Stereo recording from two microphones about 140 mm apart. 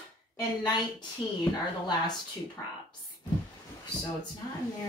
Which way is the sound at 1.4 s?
30° left (ahead or behind).